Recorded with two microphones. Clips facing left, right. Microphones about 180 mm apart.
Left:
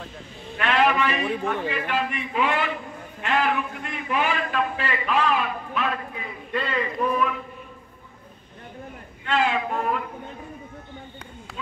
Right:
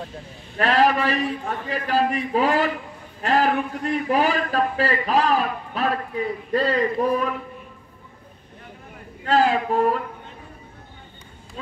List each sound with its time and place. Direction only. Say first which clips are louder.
0.6 s a man's voice: right 3 dB; 35° right (ahead or behind)
9.2 s a man's voice: right 4 dB; 35° right (ahead or behind)